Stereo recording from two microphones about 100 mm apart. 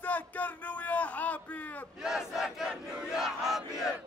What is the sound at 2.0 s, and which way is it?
Battle cry, 5° right (ahead or behind).